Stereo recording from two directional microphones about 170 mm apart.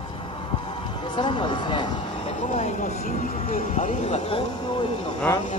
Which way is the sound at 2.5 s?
45° left (ahead or behind).